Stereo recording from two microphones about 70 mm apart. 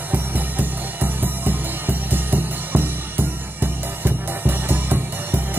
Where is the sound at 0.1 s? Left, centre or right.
Right.